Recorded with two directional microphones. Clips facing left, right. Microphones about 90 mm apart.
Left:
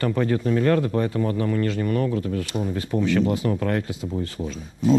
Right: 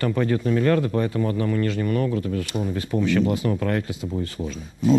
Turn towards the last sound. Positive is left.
turn(degrees=35)  # may be behind; listen again after turning